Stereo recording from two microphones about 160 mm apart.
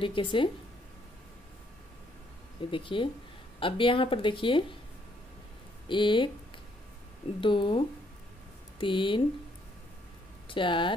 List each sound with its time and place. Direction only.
0.0 s speech: 30° left (ahead or behind)
2.7 s speech: 30° left (ahead or behind)
5.9 s speech: 30° left (ahead or behind)
7.3 s speech: 30° left (ahead or behind)
10.5 s speech: 30° left (ahead or behind)